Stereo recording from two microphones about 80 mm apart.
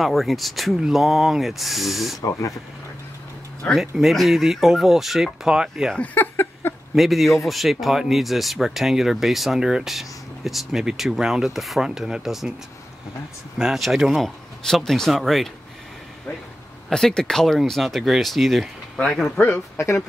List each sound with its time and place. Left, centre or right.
0.0 s speech: centre
3.7 s speech: centre
5.9 s speech: left
6.6 s a sound: left
7.0 s speech: centre
13.6 s speech: centre
16.9 s speech: centre
19.3 s speech: centre